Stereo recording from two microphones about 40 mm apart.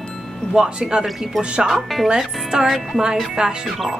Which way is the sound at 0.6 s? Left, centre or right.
Centre.